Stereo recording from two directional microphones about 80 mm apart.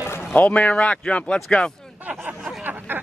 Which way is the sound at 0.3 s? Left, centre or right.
Left.